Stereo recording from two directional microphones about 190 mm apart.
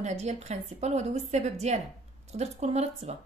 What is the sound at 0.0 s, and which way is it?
Speech, 35° right (ahead or behind).